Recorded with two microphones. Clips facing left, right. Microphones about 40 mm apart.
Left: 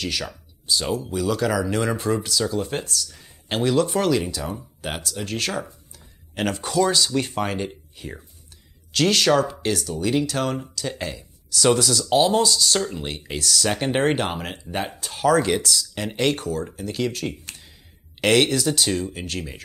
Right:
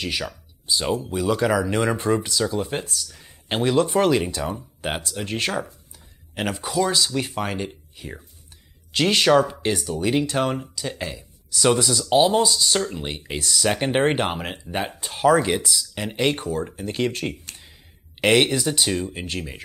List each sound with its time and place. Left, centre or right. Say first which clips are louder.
0.7 s speech: right 1 dB; centre
3.1 s a sound: right 1 dB; centre
3.4 s speech: even; right
6.3 s speech: left 2 dB; centre
8.9 s speech: right 1 dB; centre
18.2 s speech: even; centre